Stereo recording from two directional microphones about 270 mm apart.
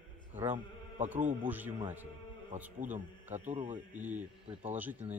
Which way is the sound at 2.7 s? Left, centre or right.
Right.